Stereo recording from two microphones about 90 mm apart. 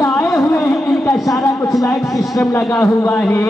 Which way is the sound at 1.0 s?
35° left (ahead or behind).